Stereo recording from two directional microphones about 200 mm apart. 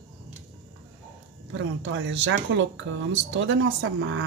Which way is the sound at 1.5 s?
70° right (ahead or behind).